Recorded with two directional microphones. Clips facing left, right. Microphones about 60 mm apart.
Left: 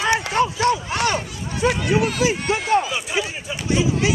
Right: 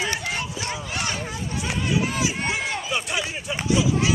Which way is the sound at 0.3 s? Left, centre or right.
Left.